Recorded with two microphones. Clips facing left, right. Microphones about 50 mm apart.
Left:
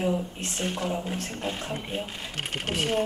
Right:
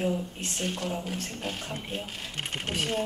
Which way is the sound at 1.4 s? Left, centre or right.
Centre.